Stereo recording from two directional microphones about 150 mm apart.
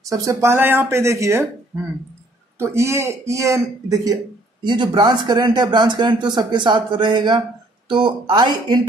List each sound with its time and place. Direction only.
0.0 s speech: 20° right (ahead or behind)
2.6 s a man's voice: 20° right (ahead or behind)